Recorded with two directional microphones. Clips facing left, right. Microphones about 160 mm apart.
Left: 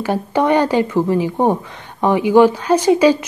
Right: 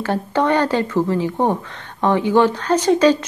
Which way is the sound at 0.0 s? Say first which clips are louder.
Left 2 dB; 10° left (ahead or behind).